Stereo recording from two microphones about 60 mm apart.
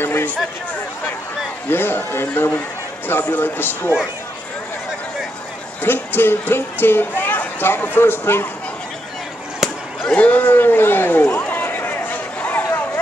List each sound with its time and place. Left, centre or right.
0.0 s a sound: left
1.7 s speech: left
5.8 s speech: left
10.0 s run: left